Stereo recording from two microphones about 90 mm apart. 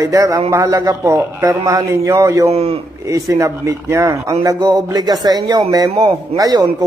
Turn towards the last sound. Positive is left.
turn(degrees=-45)  # may be behind; listen again after turning